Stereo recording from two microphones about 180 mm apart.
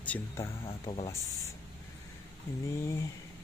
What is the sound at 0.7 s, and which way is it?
Speech, 25° left (ahead or behind).